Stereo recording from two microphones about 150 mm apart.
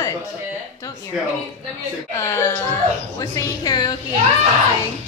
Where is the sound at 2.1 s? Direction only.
20° left (ahead or behind).